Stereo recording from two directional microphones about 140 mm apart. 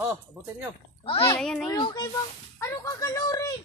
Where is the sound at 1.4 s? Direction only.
5° left (ahead or behind).